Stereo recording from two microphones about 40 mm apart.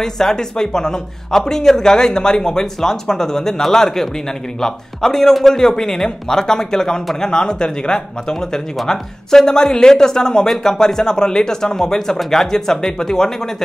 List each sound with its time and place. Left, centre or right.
0.0 s speech: centre